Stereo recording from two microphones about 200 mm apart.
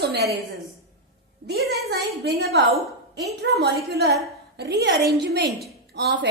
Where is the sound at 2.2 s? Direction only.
55° right (ahead or behind).